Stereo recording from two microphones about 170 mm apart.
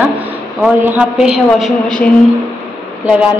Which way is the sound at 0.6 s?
5° right (ahead or behind).